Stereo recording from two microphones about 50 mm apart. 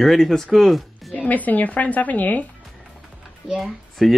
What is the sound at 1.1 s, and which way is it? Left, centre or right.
A woman's voice, left.